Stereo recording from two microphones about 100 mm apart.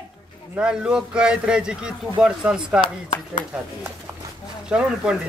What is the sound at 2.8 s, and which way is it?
Speech, 55° left (ahead or behind).